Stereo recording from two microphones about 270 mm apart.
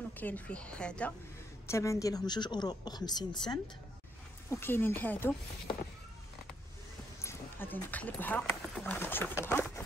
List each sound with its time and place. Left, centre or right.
0.2 s a woman's voice: centre
7.2 s speech: centre